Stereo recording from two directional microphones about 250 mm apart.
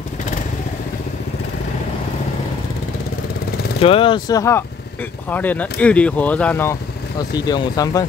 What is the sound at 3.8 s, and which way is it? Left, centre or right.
Speech, left.